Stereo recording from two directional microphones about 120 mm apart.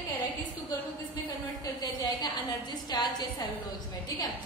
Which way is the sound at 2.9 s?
35° left (ahead or behind).